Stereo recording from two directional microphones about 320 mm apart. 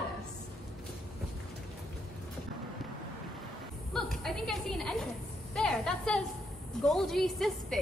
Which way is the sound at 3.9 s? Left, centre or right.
Centre.